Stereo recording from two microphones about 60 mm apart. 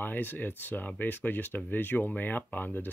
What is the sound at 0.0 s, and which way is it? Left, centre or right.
Speech, left.